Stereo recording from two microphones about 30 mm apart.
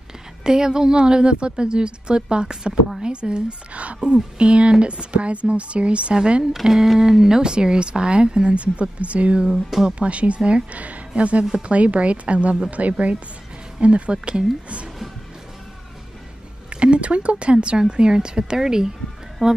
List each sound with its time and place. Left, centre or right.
0.4 s speech: right
3.7 s speech: right
4.0 s speech: right
6.7 s speech: centre; by 14.1 s right
14.1 s speech: right
16.8 s speech: right